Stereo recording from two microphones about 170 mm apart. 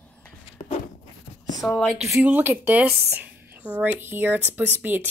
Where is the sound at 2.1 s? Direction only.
10° right (ahead or behind).